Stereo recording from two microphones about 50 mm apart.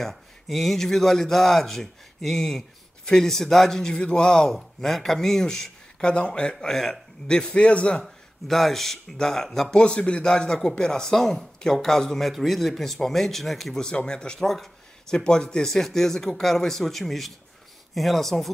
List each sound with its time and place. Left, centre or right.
0.0 s speech: centre; by 8.0 s left
8.5 s speech: centre
13.8 s speech: centre
14.4 s speech: centre